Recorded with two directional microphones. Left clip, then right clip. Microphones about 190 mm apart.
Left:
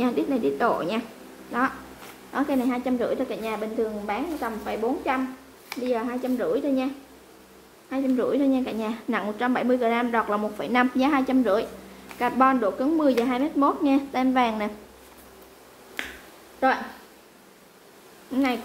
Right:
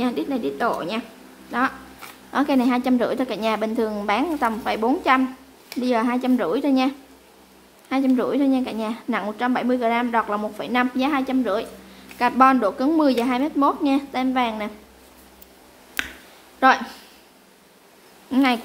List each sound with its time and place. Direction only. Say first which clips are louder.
0.0 s a woman's voice: even; centre (ahead or behind)
2.3 s a woman's voice: right 5 dB; 25° right (ahead or behind)
7.9 s a woman's voice: right 3 dB; 20° right (ahead or behind); by 11.6 s centre (ahead or behind)
12.2 s a woman's voice: right 5 dB; 15° right (ahead or behind)
16.5 s speech: right 6 dB; 35° right (ahead or behind)
18.3 s a woman's voice: right 5 dB; 25° right (ahead or behind)